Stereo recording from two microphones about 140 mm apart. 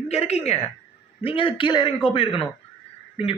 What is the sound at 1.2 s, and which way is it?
A man's voice, 40° left (ahead or behind).